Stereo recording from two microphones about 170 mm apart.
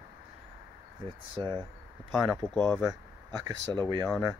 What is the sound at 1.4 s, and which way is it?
Speech, 25° right (ahead or behind).